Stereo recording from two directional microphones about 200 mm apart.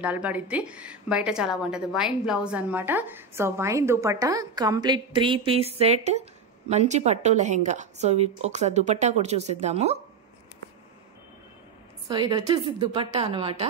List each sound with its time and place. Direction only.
0.0 s a woman's voice: 10° right (ahead or behind); by 9.9 s 35° right (ahead or behind)
12.1 s a woman's voice: 20° right (ahead or behind)